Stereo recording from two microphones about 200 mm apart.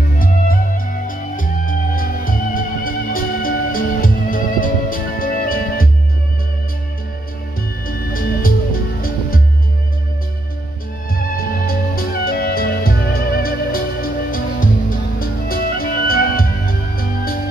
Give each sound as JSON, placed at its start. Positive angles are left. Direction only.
{"t": 0.2, "sound": "music", "side_deg": 45}
{"t": 7.8, "sound": "music", "side_deg": 45}
{"t": 11.1, "sound": "music", "side_deg": 50}